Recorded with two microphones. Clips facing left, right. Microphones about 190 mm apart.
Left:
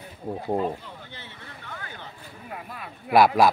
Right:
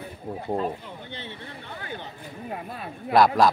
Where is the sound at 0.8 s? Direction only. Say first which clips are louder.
Right 5 dB; 25° right (ahead or behind).